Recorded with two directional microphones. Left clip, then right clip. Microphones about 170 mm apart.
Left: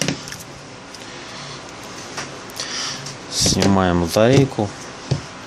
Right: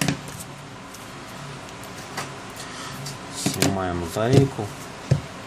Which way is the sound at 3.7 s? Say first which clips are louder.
Left 9 dB; 55° left (ahead or behind).